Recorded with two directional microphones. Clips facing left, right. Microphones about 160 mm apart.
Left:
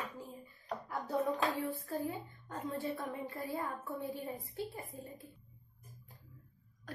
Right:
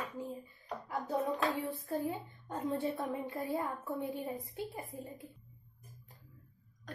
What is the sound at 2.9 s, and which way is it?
A woman's voice, 20° right (ahead or behind).